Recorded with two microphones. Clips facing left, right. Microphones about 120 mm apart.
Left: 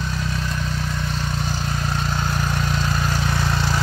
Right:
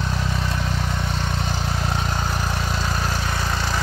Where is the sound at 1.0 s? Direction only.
25° right (ahead or behind).